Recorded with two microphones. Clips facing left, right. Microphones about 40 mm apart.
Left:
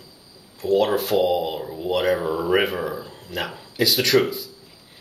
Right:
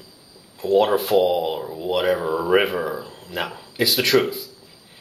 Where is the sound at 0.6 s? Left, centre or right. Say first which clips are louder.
Right 2 dB; right.